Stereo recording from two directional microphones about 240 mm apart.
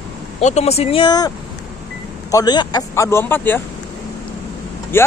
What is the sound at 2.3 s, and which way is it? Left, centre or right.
Speech, centre.